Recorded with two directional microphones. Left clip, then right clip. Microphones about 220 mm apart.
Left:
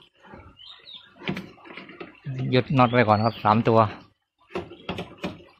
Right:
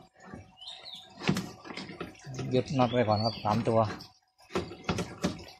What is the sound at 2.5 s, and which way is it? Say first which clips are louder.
A man's voice: left 7 dB; 30° left (ahead or behind).